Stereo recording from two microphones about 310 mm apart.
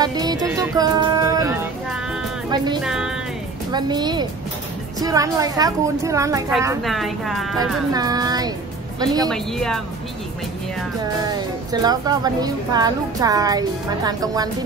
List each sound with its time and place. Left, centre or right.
0.0 s music: centre
2.5 s speech: centre
2.8 s speech: centre
3.7 s a woman's voice: centre
7.5 s a woman's voice: centre
9.3 s speech: centre
11.1 s a woman's voice: centre